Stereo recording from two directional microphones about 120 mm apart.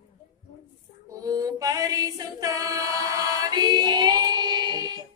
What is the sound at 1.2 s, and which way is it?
Music, 30° right (ahead or behind).